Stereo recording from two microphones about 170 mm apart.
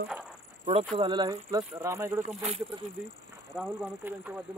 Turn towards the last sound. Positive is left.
turn(degrees=-10)  # may be behind; listen again after turning